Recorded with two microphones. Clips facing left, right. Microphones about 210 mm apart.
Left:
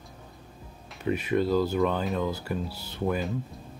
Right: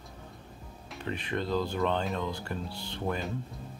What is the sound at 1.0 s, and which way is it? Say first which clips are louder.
Speech: left 8 dB; 10° left (ahead or behind).